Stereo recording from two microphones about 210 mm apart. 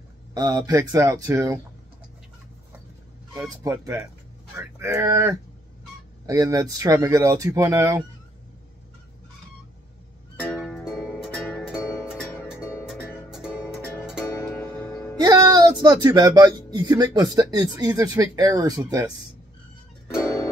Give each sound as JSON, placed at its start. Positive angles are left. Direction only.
{"t": 0.3, "sound": "speech", "side_deg": -20}
{"t": 3.3, "sound": "speech", "side_deg": -15}
{"t": 10.4, "sound": "music", "side_deg": 0}
{"t": 15.1, "sound": "speech", "side_deg": -20}
{"t": 20.2, "sound": "music", "side_deg": 15}